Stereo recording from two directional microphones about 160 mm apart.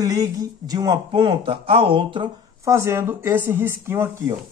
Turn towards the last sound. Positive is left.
turn(degrees=-15)  # may be behind; listen again after turning